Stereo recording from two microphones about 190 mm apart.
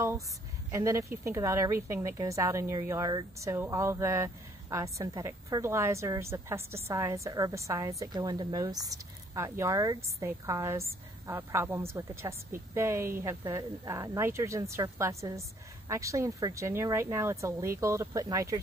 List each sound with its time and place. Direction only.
0.7 s a woman's voice: 15° right (ahead or behind)